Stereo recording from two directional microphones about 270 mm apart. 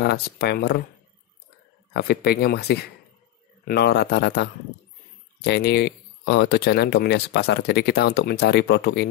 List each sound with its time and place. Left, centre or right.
0.0 s speech: left
2.0 s speech: left